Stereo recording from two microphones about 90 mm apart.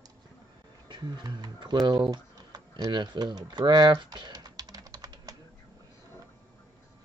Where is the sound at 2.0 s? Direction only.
45° right (ahead or behind).